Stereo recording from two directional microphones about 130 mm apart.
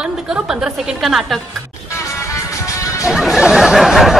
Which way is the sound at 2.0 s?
25° left (ahead or behind).